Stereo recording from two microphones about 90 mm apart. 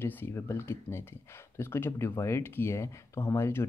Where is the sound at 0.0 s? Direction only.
25° left (ahead or behind).